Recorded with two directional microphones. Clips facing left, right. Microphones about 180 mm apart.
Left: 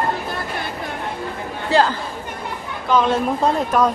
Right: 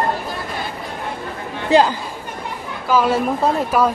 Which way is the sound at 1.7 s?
15° right (ahead or behind).